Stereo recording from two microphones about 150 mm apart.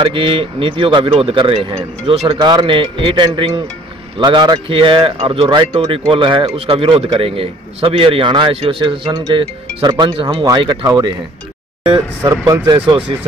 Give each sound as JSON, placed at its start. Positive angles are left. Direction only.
{"t": 0.0, "sound": "speech", "side_deg": -35}
{"t": 12.2, "sound": "speech", "side_deg": -25}